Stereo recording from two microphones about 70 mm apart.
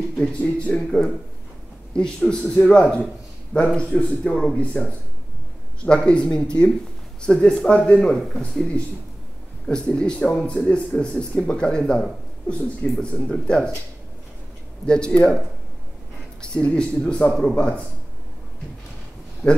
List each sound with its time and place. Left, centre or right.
0.2 s speech: centre
5.9 s speech: centre
8.1 s speech: centre
9.7 s speech: centre
14.9 s speech: centre
16.3 s speech: centre
19.4 s speech: centre